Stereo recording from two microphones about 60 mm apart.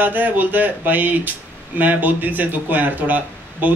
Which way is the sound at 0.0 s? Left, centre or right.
Right.